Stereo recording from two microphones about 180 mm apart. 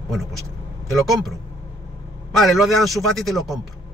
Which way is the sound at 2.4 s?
Centre (ahead or behind).